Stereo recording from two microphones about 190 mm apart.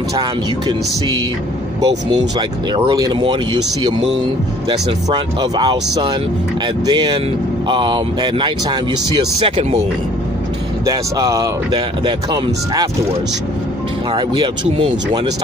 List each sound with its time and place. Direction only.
1.8 s speech: 20° right (ahead or behind)
4.6 s speech: 25° right (ahead or behind)
10.9 s speech: 20° right (ahead or behind)
14.1 s speech: 20° right (ahead or behind)